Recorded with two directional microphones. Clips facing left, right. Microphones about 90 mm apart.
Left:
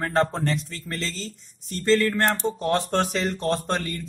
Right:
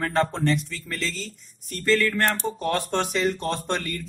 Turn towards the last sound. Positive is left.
turn(degrees=35)  # may be behind; listen again after turning